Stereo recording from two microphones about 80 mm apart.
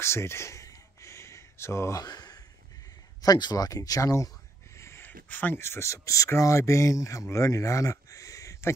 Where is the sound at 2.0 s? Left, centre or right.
Left.